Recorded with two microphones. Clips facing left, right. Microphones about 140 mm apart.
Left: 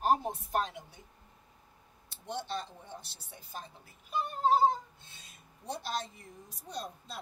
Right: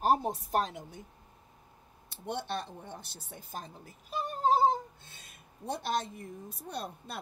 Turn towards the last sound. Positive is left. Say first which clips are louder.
# right 2 dB
turn(degrees=-60)  # may be behind; listen again after turning